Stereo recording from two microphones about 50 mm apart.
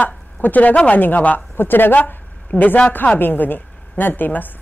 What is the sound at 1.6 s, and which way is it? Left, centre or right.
Speech, left.